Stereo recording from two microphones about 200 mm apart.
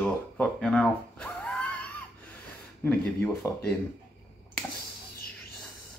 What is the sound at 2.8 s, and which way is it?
Speech, 10° left (ahead or behind).